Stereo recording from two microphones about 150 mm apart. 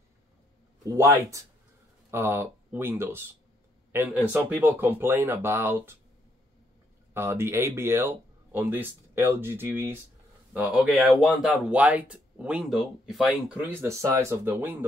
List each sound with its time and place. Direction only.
0.8 s speech: 20° right (ahead or behind)
7.2 s speech: 15° right (ahead or behind)